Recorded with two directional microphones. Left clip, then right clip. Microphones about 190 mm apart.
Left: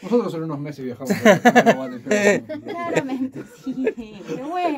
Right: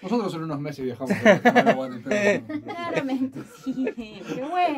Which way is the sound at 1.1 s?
30° left (ahead or behind).